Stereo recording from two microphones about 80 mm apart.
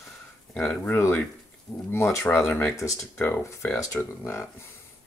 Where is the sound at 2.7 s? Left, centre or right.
Left.